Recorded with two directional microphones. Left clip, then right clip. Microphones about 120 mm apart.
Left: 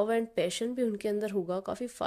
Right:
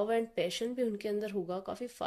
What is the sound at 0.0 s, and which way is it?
A woman's voice, 30° left (ahead or behind).